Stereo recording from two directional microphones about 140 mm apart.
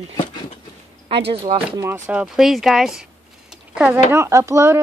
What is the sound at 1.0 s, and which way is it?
Speech, 45° right (ahead or behind).